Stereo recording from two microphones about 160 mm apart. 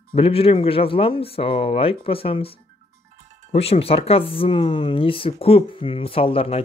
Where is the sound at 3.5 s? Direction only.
40° left (ahead or behind).